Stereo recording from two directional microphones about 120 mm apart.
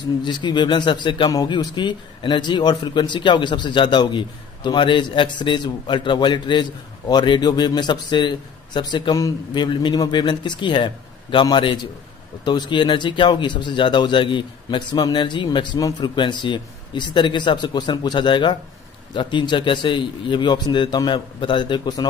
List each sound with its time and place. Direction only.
0.0 s a man's voice: 40° left (ahead or behind)